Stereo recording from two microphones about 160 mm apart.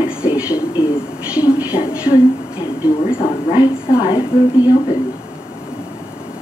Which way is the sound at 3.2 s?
30° left (ahead or behind).